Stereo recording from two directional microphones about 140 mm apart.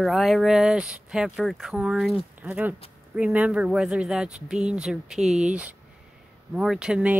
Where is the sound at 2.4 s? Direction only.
10° right (ahead or behind).